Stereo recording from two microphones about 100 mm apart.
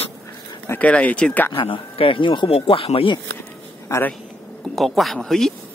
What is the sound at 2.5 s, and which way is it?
Speech, 70° left (ahead or behind).